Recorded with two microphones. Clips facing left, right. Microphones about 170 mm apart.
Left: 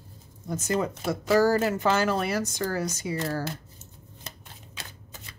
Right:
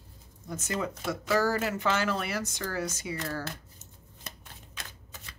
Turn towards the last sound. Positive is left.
turn(degrees=30)  # may be behind; listen again after turning